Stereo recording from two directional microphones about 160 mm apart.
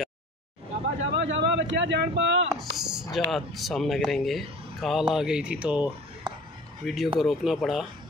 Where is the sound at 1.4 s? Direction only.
90° right.